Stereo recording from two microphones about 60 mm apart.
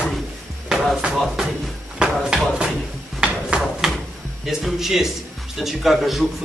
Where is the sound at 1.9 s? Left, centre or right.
Centre.